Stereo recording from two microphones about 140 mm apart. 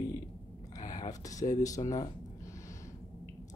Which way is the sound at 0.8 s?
25° left (ahead or behind).